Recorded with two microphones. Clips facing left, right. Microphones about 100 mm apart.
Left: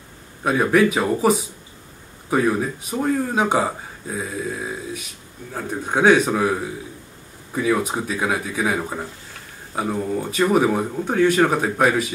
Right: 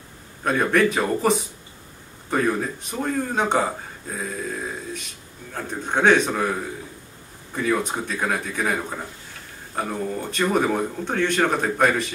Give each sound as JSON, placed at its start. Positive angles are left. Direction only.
{"t": 0.4, "sound": "speech", "side_deg": 5}